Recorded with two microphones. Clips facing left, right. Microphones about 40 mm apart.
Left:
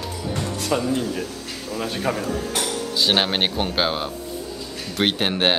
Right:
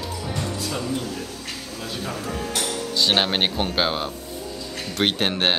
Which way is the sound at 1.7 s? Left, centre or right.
Left.